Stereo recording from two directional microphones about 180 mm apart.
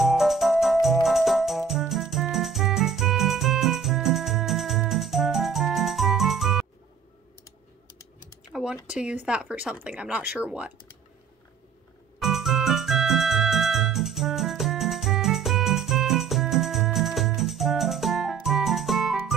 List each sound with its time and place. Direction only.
0.0 s music: centre (ahead or behind)
8.5 s speech: 5° right (ahead or behind)
12.2 s music: centre (ahead or behind)